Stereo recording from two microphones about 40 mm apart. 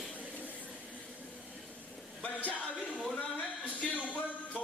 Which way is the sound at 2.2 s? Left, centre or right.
Left.